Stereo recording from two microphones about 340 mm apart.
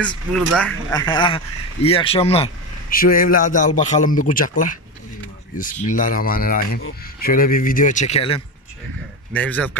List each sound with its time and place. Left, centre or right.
0.6 s speech: centre
9.3 s a man's voice: centre